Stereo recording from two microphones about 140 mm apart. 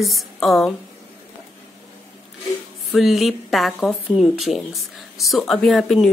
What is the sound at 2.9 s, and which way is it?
Speech, centre (ahead or behind).